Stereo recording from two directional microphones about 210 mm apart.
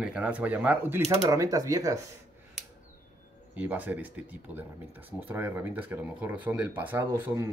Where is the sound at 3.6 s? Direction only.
10° right (ahead or behind).